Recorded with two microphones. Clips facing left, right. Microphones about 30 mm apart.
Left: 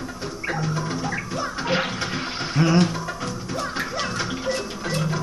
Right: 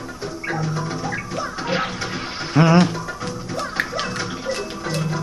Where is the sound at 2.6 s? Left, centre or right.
Right.